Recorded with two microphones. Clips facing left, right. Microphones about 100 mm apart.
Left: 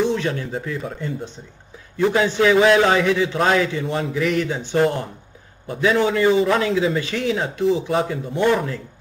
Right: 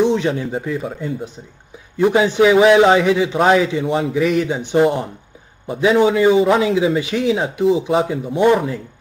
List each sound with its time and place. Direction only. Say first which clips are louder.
0.0 s speech: right 5 dB; 15° right (ahead or behind)